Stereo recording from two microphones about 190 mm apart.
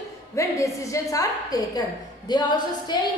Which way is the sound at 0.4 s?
15° left (ahead or behind).